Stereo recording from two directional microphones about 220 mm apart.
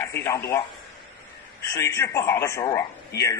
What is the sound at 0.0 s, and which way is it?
Speech, 10° left (ahead or behind).